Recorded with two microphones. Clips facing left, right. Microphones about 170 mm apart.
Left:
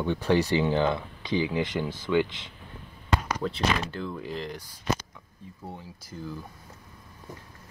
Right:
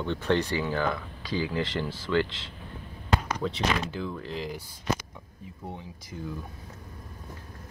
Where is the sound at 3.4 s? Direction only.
Centre (ahead or behind).